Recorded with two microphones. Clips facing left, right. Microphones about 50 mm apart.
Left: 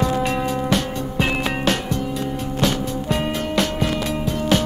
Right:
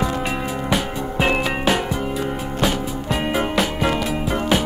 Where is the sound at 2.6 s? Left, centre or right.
Centre.